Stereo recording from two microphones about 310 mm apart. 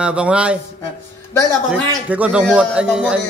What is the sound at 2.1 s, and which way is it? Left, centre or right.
A man's voice, centre.